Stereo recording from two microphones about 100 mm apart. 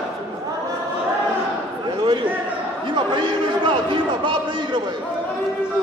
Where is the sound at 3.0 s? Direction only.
55° right (ahead or behind).